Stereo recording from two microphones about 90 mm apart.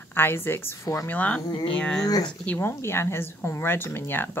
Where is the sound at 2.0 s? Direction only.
45° left (ahead or behind).